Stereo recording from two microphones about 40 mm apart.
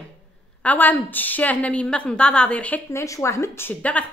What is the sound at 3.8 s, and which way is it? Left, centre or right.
Speech, left.